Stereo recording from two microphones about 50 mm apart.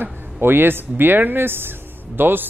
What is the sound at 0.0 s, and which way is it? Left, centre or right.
Speech, right.